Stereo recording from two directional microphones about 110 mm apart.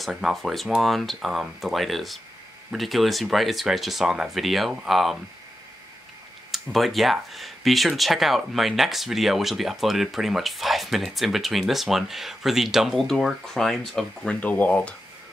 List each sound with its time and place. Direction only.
0.0 s speech: centre (ahead or behind)
6.5 s speech: centre (ahead or behind)